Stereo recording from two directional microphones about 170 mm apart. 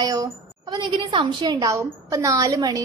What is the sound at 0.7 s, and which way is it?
A woman's voice, 25° right (ahead or behind).